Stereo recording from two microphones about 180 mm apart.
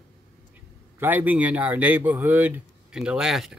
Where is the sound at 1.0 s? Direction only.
10° right (ahead or behind).